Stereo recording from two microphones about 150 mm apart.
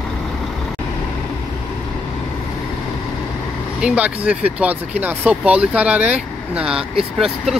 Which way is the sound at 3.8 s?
10° right (ahead or behind).